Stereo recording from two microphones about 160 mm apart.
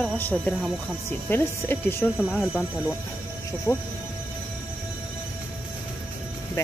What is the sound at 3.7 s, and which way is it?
Speech, 20° left (ahead or behind).